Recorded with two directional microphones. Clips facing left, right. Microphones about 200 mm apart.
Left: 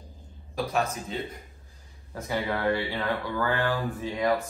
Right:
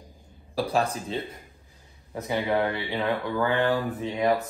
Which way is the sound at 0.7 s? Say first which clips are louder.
Right 2 dB; 30° right (ahead or behind).